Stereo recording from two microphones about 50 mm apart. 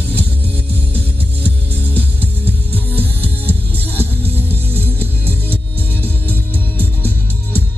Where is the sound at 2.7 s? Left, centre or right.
Left.